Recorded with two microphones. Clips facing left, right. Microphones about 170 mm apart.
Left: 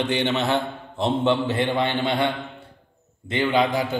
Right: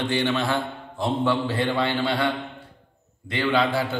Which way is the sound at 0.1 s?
20° left (ahead or behind).